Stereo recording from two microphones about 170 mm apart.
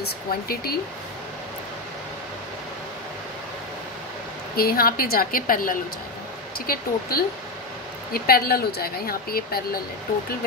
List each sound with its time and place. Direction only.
0.0 s speech: 65° left (ahead or behind)
4.6 s speech: 60° left (ahead or behind)